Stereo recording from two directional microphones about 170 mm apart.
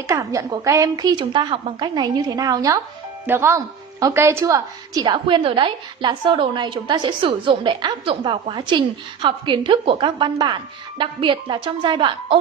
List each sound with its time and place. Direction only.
0.0 s a woman's voice: 20° right (ahead or behind)